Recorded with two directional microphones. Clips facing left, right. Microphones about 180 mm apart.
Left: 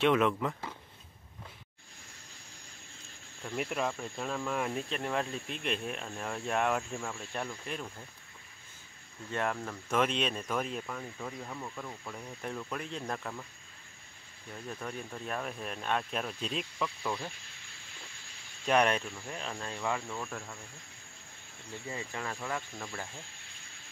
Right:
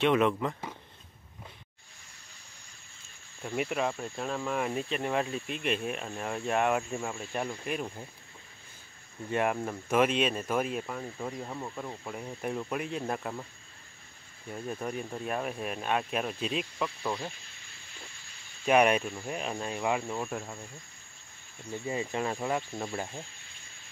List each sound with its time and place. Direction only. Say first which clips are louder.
0.0 s speech: right 2 dB; centre (ahead or behind)
3.4 s speech: right 3 dB; 5° right (ahead or behind)
7.8 s speech: right 6 dB; 25° right (ahead or behind)
9.3 s speech: right 5 dB; 15° right (ahead or behind)
9.9 s speech: right 4 dB; 5° right (ahead or behind); by 12.4 s 25° right (ahead or behind)
12.4 s speech: right 5 dB; 15° right (ahead or behind)
14.8 s speech: right 5 dB; 10° right (ahead or behind)
18.7 s speech: right 4 dB; 10° right (ahead or behind)
21.8 s speech: right 7 dB; 20° right (ahead or behind)